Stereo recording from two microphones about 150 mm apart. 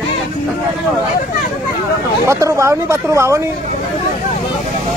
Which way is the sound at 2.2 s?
20° right (ahead or behind).